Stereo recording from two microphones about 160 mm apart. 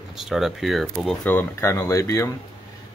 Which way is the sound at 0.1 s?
Centre (ahead or behind).